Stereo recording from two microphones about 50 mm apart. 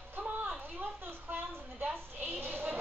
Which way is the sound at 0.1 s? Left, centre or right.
Right.